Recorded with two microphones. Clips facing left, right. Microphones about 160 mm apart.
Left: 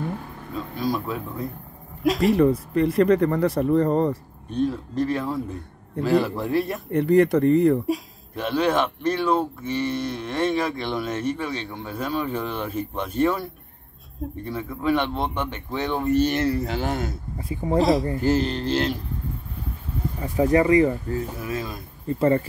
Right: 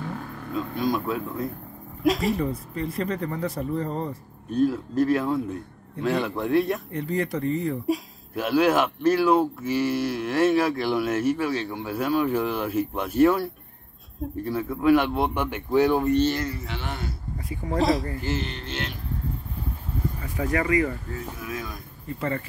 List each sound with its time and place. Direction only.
0.7 s speech: centre (ahead or behind)
2.3 s speech: 70° left (ahead or behind)
4.5 s speech: 5° right (ahead or behind)
6.9 s speech: 65° left (ahead or behind)
7.8 s speech: centre (ahead or behind)
16.3 s speech: 35° left (ahead or behind)
17.4 s speech: 25° left (ahead or behind)
17.7 s speech: centre (ahead or behind)
18.2 s speech: 40° left (ahead or behind)
20.2 s speech: 25° left (ahead or behind)